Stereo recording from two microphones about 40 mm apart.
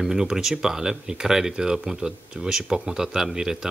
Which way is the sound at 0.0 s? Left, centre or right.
Centre.